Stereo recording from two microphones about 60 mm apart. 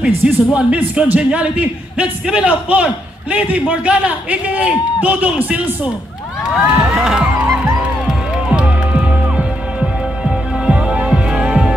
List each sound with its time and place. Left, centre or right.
0.0 s a man's voice: centre
6.5 s cheering: centre
8.5 s music: centre